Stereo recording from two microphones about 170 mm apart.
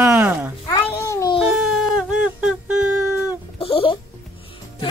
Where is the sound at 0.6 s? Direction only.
20° left (ahead or behind).